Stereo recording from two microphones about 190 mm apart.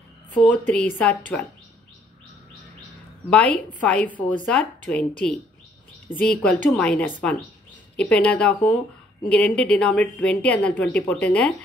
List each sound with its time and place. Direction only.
0.5 s a woman's voice: 10° left (ahead or behind)
3.3 s a woman's voice: 5° left (ahead or behind)